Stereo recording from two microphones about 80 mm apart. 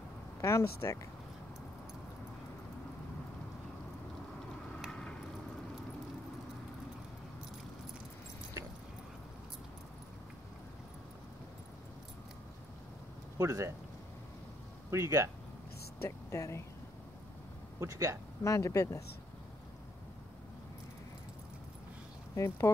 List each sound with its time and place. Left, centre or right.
0.4 s speech: left
13.4 s speech: right
14.9 s speech: right
16.0 s speech: left
17.7 s speech: right
18.4 s speech: left
22.3 s speech: left